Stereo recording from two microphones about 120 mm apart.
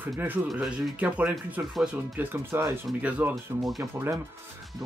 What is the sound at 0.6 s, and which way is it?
Speech, 10° right (ahead or behind).